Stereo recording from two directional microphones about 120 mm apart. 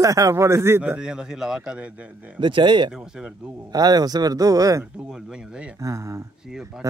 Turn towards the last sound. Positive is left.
turn(degrees=-25)  # may be behind; listen again after turning